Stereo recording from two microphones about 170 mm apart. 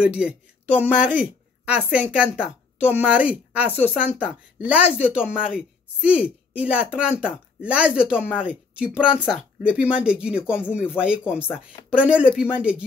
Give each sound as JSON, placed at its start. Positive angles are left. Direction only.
{"t": 0.0, "sound": "a woman's voice", "side_deg": -5}